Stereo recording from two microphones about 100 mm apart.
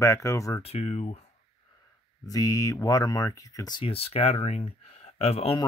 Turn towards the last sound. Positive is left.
turn(degrees=80)